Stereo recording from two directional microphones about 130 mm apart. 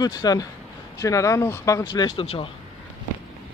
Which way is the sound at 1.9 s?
40° left (ahead or behind).